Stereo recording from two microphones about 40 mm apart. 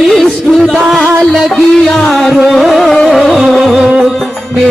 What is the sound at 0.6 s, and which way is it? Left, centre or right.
Music, centre.